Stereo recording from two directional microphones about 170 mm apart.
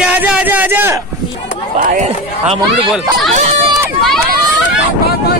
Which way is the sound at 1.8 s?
45° right (ahead or behind).